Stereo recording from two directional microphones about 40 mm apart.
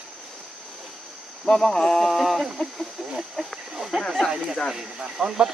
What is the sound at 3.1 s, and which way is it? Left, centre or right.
Speech, centre.